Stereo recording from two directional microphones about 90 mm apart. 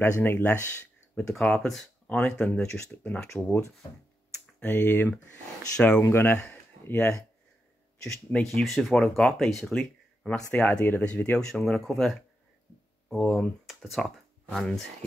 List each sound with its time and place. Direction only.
0.0 s speech: 25° left (ahead or behind)
1.3 s speech: 5° left (ahead or behind)
6.0 s speech: 25° left (ahead or behind)
6.5 s a sound: 20° left (ahead or behind)
8.3 s speech: 15° left (ahead or behind)
8.6 s speech: centre (ahead or behind)
13.2 s speech: 5° left (ahead or behind)